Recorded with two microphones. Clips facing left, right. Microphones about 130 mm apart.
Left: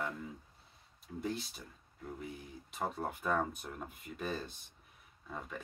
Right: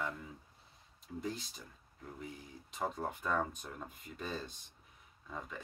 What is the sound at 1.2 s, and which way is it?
Speech, 5° left (ahead or behind).